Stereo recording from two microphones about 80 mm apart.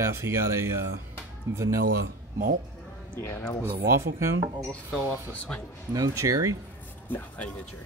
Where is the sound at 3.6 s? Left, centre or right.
Right.